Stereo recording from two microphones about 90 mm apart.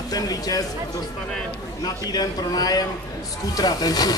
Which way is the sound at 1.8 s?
45° left (ahead or behind).